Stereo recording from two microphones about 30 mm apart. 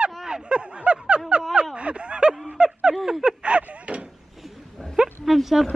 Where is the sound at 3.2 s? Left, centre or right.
Right.